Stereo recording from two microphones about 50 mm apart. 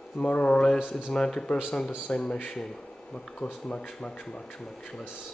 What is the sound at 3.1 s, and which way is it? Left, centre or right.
Speech, left.